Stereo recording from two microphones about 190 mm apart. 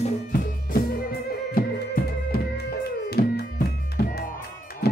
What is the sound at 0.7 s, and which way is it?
Music, 50° left (ahead or behind).